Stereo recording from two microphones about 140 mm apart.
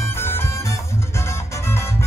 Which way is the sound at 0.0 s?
15° left (ahead or behind).